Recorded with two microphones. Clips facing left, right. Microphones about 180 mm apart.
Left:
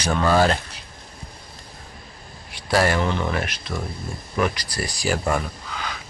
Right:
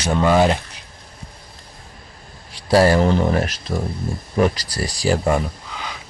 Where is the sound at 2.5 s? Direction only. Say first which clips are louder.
Right 6 dB; 30° right (ahead or behind).